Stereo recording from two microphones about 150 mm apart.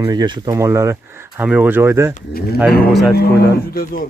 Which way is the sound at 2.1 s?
80° left.